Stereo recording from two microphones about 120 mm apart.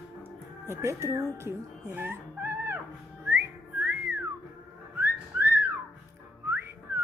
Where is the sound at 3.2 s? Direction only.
15° right (ahead or behind).